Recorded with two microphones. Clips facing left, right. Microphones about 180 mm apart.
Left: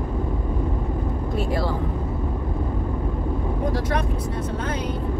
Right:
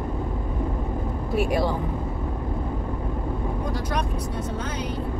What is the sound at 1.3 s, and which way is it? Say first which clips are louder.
Speech: right 3 dB; 15° right (ahead or behind).